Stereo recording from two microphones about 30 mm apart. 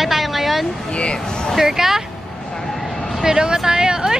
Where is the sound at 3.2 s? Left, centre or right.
Right.